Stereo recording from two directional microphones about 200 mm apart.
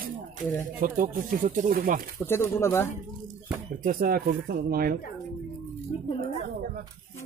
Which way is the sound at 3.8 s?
45° right (ahead or behind).